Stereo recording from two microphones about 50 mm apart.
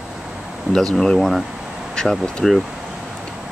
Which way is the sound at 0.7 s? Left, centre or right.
Centre.